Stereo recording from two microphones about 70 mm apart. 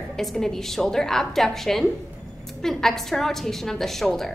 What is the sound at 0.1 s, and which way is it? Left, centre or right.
A woman's voice, centre.